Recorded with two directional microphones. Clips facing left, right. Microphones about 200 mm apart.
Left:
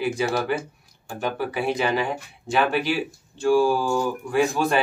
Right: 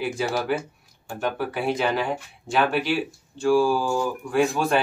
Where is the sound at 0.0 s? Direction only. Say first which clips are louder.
Left 2 dB; centre (ahead or behind).